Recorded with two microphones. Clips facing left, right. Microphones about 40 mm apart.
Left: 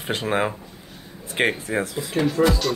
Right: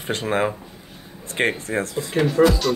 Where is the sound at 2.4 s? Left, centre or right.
Right.